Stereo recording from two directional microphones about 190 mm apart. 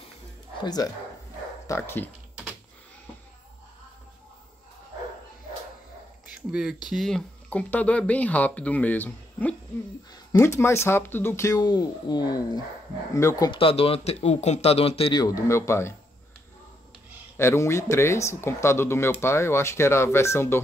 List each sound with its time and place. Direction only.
1.7 s speech: 10° left (ahead or behind)
6.3 s speech: 5° right (ahead or behind); by 15.9 s 15° left (ahead or behind)
17.4 s speech: 15° left (ahead or behind)